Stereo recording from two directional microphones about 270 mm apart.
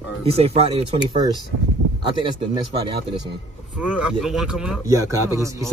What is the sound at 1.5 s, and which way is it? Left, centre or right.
Speech, right.